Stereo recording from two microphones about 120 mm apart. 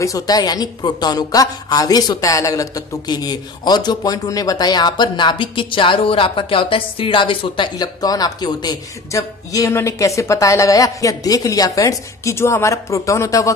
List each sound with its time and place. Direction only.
0.0 s speech: 30° left (ahead or behind)